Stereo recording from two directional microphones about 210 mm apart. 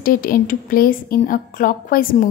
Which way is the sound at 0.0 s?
40° left (ahead or behind).